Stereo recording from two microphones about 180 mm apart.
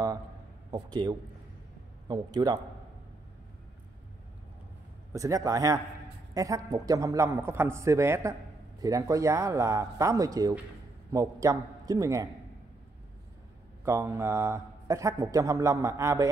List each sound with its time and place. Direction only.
0.7 s a man's voice: 20° right (ahead or behind)
5.1 s a man's voice: 20° right (ahead or behind)
13.8 s a man's voice: 15° right (ahead or behind)